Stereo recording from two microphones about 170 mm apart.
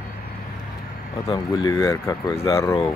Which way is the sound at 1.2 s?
25° left (ahead or behind).